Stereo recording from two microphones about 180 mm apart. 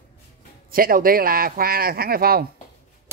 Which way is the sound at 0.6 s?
55° right (ahead or behind).